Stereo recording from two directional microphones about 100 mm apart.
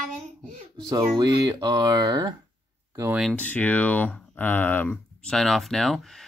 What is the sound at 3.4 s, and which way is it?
Speech, 15° left (ahead or behind).